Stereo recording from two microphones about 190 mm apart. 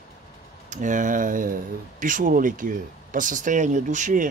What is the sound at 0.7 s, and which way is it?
Speech, 40° right (ahead or behind).